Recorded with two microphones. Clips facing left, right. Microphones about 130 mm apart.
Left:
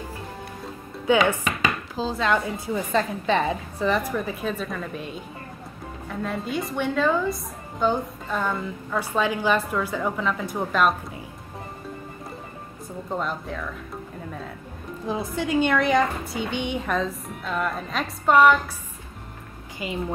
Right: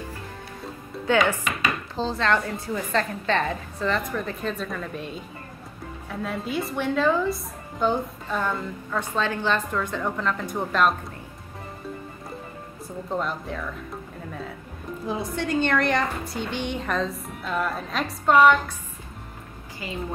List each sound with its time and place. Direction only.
1.1 s a woman's voice: 10° left (ahead or behind)
13.1 s a woman's voice: centre (ahead or behind)
15.0 s a woman's voice: centre (ahead or behind)
19.8 s a woman's voice: 20° left (ahead or behind)